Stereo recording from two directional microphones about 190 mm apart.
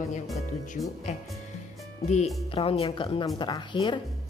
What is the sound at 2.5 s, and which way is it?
Speech, 30° left (ahead or behind).